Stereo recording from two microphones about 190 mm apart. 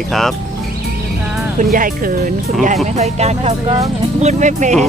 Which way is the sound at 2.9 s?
35° right (ahead or behind).